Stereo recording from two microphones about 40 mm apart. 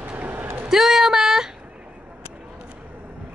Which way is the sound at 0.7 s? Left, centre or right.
Centre.